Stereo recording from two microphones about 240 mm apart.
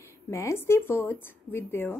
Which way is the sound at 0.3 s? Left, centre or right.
Centre.